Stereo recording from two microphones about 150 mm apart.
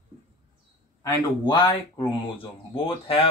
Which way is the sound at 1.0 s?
30° left (ahead or behind).